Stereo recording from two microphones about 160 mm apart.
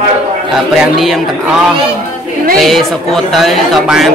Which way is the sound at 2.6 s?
Centre (ahead or behind).